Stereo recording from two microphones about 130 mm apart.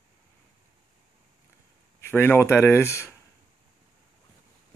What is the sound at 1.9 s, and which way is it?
Speech, 15° left (ahead or behind).